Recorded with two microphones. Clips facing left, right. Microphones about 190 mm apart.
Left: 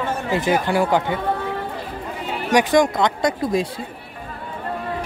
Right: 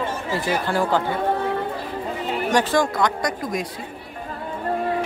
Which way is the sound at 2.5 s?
15° left (ahead or behind).